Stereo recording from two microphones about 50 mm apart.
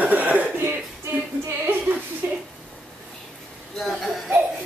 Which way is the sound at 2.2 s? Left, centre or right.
Right.